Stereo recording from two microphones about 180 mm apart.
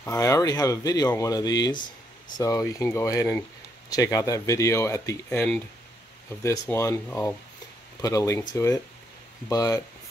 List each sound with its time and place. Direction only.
0.0 s speech: 20° left (ahead or behind)